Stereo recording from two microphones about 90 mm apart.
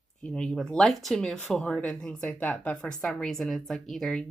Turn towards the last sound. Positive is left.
turn(degrees=5)  # may be behind; listen again after turning